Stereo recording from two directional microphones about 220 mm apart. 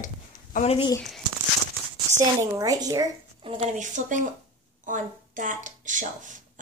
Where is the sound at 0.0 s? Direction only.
35° left (ahead or behind).